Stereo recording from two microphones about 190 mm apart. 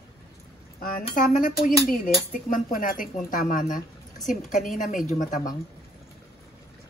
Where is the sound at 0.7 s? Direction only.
50° left (ahead or behind).